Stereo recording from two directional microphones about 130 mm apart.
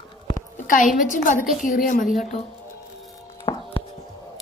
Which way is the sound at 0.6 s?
90° left.